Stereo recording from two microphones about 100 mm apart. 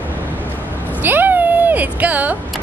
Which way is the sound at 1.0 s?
20° right (ahead or behind).